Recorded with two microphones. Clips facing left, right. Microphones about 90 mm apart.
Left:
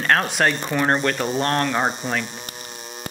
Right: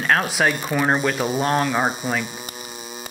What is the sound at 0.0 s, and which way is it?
Speech, 5° right (ahead or behind).